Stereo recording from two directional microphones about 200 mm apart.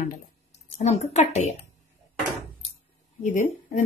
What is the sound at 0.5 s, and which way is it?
Speech, 35° left (ahead or behind).